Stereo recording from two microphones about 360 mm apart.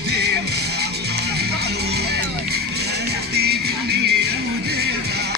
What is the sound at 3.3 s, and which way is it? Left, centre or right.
Music, right.